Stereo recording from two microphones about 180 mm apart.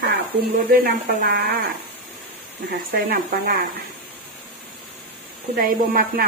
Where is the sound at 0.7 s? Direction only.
55° right (ahead or behind).